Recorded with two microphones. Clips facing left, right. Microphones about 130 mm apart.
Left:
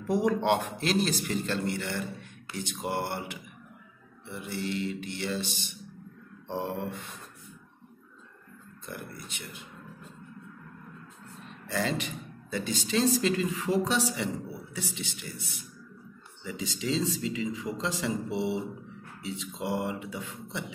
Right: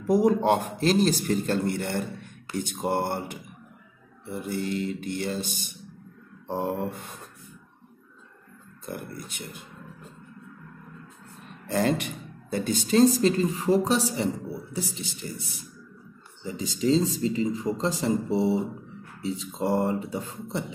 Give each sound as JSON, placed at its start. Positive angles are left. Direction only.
{"t": 0.1, "sound": "speech", "side_deg": -40}
{"t": 8.8, "sound": "speech", "side_deg": -45}
{"t": 11.7, "sound": "speech", "side_deg": -50}